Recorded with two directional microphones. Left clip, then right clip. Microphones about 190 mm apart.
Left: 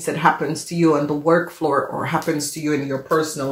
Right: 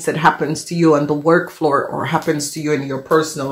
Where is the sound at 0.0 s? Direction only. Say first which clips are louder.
Right 3 dB; 45° right (ahead or behind).